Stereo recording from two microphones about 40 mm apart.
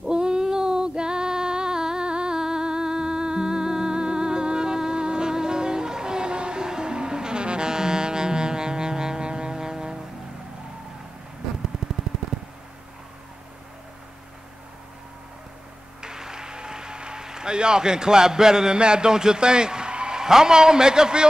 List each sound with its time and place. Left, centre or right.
0.1 s female singing: right
11.7 s a sound: centre
16.0 s a man's voice: centre